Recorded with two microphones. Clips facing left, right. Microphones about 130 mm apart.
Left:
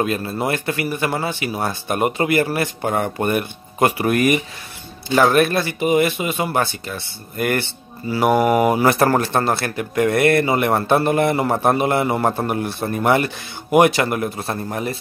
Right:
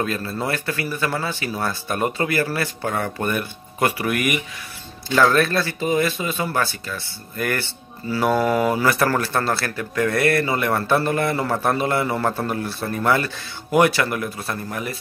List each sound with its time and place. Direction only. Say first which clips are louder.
0.0 s speech: left 3 dB; 20° left (ahead or behind); by 4.4 s 35° left (ahead or behind)
5.1 s speech: left 2 dB; 20° left (ahead or behind)